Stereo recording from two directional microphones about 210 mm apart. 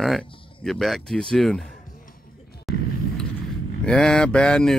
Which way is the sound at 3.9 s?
5° left (ahead or behind).